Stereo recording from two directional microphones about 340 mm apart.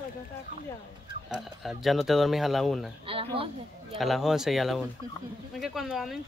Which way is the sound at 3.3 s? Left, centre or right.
Centre.